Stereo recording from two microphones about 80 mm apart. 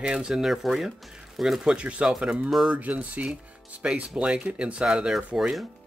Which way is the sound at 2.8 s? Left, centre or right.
Centre.